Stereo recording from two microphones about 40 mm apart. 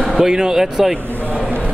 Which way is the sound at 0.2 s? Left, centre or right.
Centre.